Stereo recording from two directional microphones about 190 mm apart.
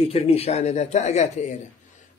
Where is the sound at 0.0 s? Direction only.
30° left (ahead or behind).